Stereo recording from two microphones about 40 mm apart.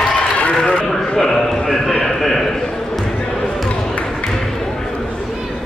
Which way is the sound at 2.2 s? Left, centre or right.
Centre.